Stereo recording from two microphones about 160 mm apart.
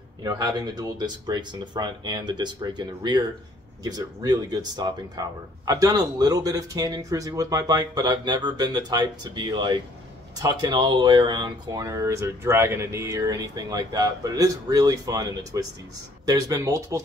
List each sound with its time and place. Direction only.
0.2 s speech: 25° right (ahead or behind)